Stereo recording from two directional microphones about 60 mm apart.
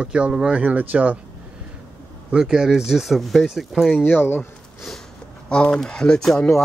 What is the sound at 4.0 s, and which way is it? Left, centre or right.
Speech, left.